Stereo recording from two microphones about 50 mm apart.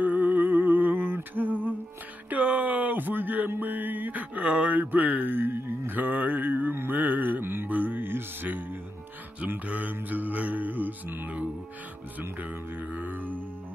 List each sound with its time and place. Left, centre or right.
0.0 s music: right
2.2 s a sound: right
6.7 s music: right
7.0 s music: right